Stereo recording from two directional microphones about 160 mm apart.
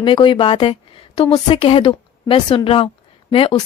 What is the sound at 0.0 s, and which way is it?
A woman's voice, 30° left (ahead or behind).